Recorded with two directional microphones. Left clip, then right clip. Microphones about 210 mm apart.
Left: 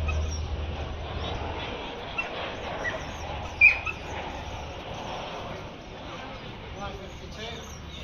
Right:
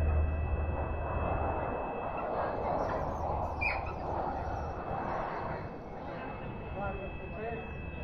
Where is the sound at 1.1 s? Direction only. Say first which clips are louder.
Right 1 dB; 30° right (ahead or behind).